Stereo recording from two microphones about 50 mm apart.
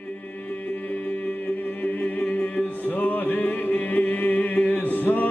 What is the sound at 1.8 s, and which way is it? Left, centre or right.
Music, left.